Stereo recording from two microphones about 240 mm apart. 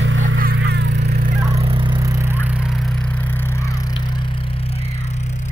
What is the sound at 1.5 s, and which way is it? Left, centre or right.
Fowl, right.